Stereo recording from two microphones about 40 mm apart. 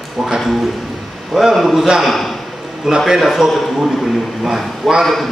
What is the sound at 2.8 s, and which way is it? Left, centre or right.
Speech, centre.